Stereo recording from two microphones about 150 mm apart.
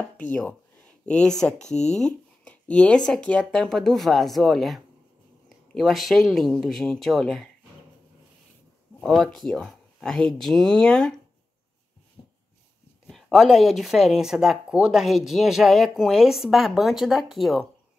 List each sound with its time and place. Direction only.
0.0 s a sound: 10° left (ahead or behind)
1.0 s speech: 5° left (ahead or behind)
9.0 s speech: centre (ahead or behind)
12.2 s dog: 35° left (ahead or behind)
13.0 s speech: centre (ahead or behind)